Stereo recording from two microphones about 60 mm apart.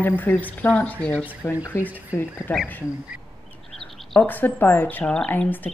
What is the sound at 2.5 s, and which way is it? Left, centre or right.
Speech, left.